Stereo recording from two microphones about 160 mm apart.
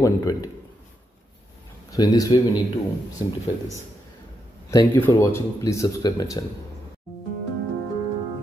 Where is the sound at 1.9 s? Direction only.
25° left (ahead or behind).